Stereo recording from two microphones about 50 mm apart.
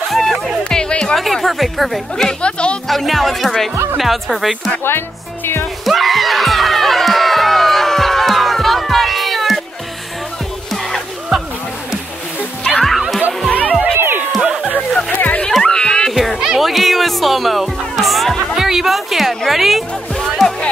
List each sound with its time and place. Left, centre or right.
0.1 s speech: centre
1.1 s a woman's voice: centre
2.4 s speech: left
2.9 s a woman's voice: centre
4.8 s speech: left
5.9 s music: centre
10.7 s music: centre
12.7 s music: centre
13.9 s music: right
14.4 s a sound: centre
14.8 s music: centre
15.1 s music: left
15.6 s music: centre
16.1 s music: centre